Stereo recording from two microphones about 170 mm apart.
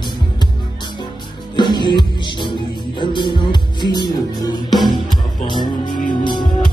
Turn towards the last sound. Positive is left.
turn(degrees=25)  # may be behind; listen again after turning